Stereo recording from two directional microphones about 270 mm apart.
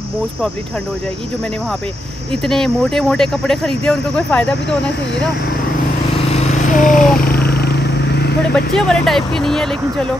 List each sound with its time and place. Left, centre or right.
2.4 s speech: centre
6.2 s vehicle: left
8.7 s speech: centre